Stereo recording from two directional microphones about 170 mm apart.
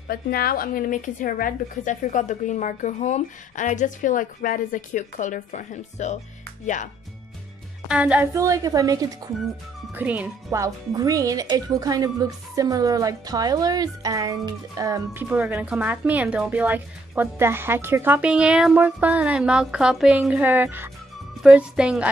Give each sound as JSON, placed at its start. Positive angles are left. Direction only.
{"t": 0.1, "sound": "a woman's voice", "side_deg": 60}
{"t": 7.9, "sound": "speech", "side_deg": -10}
{"t": 8.4, "sound": "a woman's voice", "side_deg": -20}
{"t": 9.9, "sound": "speech", "side_deg": -10}